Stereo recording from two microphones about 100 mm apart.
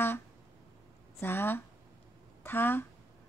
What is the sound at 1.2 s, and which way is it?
Speech, 20° left (ahead or behind).